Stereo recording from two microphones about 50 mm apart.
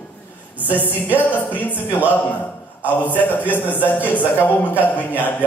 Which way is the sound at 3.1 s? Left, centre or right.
Left.